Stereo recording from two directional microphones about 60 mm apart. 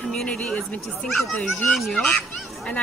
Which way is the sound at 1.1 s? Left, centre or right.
Centre.